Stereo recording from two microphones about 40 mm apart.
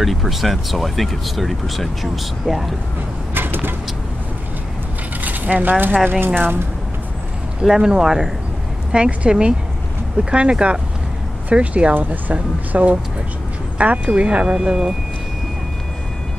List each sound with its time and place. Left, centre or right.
0.0 s speech: centre
3.3 s vehicle: right
5.2 s pulleys: right
6.2 s speech: right
7.6 s speech: centre
8.9 s speech: right
11.9 s speech: right